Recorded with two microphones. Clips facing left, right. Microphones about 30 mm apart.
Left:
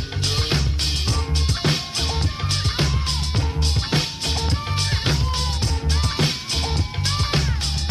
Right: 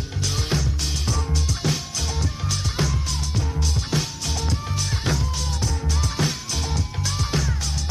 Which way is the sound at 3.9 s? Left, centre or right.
Left.